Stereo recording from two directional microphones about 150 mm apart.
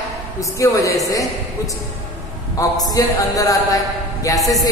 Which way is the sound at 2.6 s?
25° left (ahead or behind).